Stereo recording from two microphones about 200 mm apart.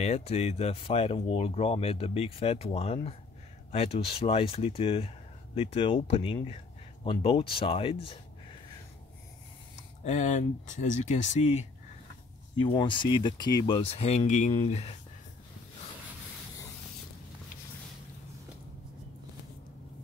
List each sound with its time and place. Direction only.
0.0 s speech: 30° left (ahead or behind)
10.0 s speech: 35° left (ahead or behind)
12.5 s speech: 25° left (ahead or behind)